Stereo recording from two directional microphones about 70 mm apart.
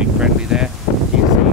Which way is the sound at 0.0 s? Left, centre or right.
Centre.